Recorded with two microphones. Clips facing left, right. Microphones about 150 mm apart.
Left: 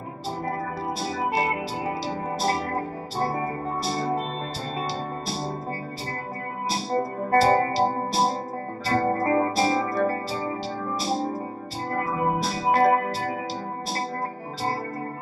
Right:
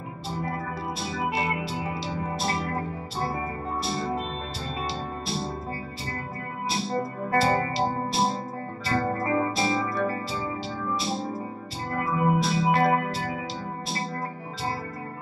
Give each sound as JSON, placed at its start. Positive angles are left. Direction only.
{"t": 1.0, "sound": "music", "side_deg": 40}
{"t": 6.7, "sound": "music", "side_deg": 40}